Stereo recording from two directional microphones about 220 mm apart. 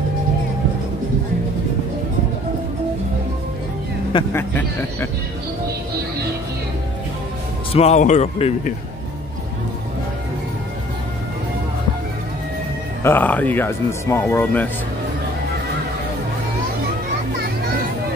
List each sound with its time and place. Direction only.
4.3 s speech: 10° left (ahead or behind)
7.7 s speech: 30° left (ahead or behind)
13.0 s speech: 10° left (ahead or behind)